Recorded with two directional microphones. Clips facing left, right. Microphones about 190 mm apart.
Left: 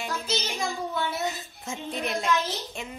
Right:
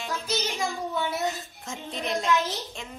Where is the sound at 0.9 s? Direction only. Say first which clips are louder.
Right 1 dB; 20° right (ahead or behind).